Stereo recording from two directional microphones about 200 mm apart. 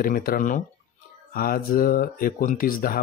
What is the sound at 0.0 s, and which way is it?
Speech, 45° left (ahead or behind).